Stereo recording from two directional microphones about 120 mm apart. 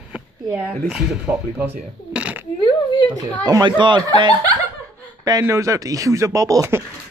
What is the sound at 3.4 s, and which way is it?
Speech, 35° right (ahead or behind).